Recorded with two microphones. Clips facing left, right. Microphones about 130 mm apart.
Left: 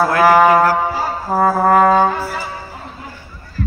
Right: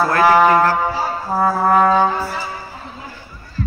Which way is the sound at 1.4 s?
55° left (ahead or behind).